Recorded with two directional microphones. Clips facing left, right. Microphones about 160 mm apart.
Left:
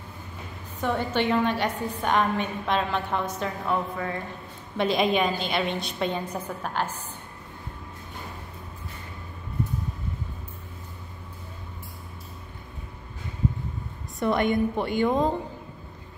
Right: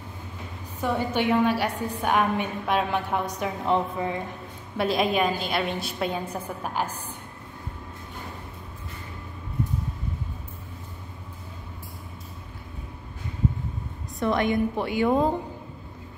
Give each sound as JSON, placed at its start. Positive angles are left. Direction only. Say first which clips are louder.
{"t": 0.7, "sound": "a woman's voice", "louder": "even", "side_deg": -10}
{"t": 4.7, "sound": "a woman's voice", "louder": "even", "side_deg": 0}
{"t": 14.2, "sound": "a woman's voice", "louder": "even", "side_deg": 0}